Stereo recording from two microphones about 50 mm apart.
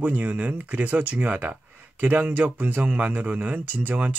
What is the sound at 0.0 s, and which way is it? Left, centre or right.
Speech, right.